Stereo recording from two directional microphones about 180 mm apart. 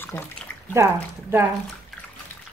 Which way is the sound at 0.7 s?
15° right (ahead or behind).